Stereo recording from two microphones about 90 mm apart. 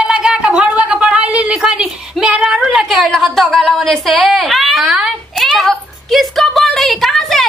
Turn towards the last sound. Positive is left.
turn(degrees=5)  # may be behind; listen again after turning